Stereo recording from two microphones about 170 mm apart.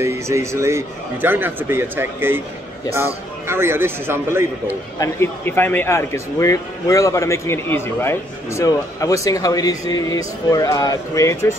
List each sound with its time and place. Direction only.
0.0 s a man's voice: 15° right (ahead or behind)
3.4 s a man's voice: 15° right (ahead or behind)
4.9 s speech: 15° left (ahead or behind)